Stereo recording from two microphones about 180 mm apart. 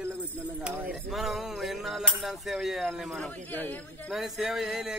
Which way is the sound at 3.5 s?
10° left (ahead or behind).